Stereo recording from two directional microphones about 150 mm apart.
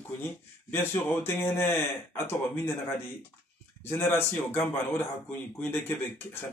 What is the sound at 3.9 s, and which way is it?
A man's voice, 15° left (ahead or behind).